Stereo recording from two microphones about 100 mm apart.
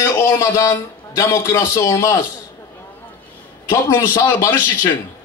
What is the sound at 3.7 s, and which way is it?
Speech, 30° left (ahead or behind).